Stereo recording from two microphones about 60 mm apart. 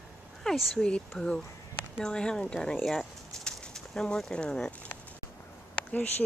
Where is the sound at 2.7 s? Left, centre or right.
Centre.